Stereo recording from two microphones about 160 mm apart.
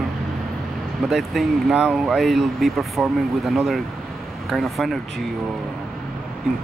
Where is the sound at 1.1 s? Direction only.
Centre (ahead or behind).